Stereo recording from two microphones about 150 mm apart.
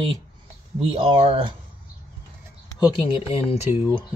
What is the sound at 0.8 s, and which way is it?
Speech, 35° right (ahead or behind).